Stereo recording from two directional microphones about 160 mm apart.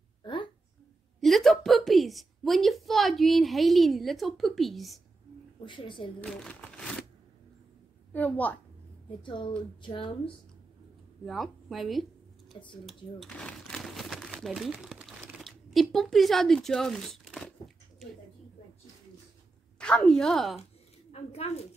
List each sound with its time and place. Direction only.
0.2 s a sound: 30° left (ahead or behind)
1.2 s a woman's voice: centre (ahead or behind)
5.7 s speech: 30° left (ahead or behind)
6.2 s a sound: 5° left (ahead or behind)
8.1 s a woman's voice: 10° left (ahead or behind)
9.2 s speech: 30° left (ahead or behind)
11.2 s a sound: centre (ahead or behind)
19.8 s speech: 5° left (ahead or behind)
21.1 s a woman's voice: 40° left (ahead or behind)